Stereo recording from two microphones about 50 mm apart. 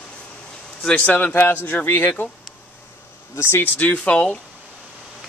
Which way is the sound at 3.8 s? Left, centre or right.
Left.